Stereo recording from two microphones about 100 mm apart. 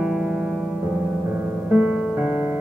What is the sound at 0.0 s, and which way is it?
Music, 5° right (ahead or behind).